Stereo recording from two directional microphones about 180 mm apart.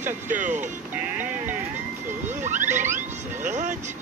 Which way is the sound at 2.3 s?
45° right (ahead or behind).